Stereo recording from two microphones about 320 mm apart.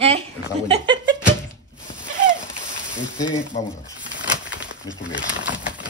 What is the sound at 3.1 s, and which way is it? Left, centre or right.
Speech, centre.